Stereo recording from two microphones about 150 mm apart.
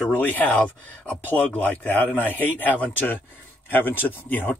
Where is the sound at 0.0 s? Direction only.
10° left (ahead or behind).